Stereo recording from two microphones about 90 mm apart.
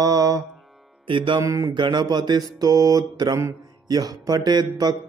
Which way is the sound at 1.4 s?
35° right (ahead or behind).